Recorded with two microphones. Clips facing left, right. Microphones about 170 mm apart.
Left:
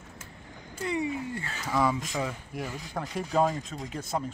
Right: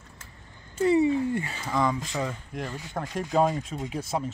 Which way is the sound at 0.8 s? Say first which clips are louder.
Right 9 dB; 30° right (ahead or behind).